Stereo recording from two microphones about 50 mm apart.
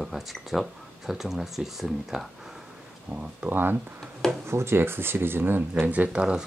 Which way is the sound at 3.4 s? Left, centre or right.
Right.